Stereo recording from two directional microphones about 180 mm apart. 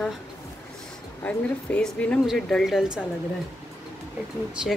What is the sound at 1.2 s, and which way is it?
A woman's voice, 5° left (ahead or behind).